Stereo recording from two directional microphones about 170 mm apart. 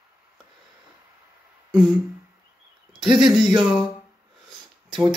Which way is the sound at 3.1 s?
30° right (ahead or behind).